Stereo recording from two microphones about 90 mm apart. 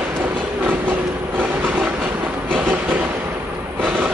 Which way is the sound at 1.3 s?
15° right (ahead or behind).